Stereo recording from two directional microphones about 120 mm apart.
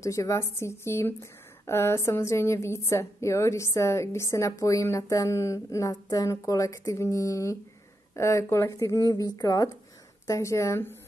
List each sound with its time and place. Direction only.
0.0 s a woman's voice: 25° left (ahead or behind)